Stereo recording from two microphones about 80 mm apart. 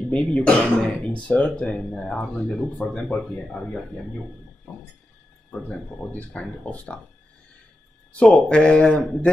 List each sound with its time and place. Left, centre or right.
0.1 s speech: centre
5.5 s speech: centre
8.2 s speech: centre